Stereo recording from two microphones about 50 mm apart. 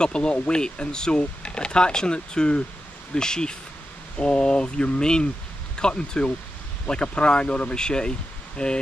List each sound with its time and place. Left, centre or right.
0.0 s speech: centre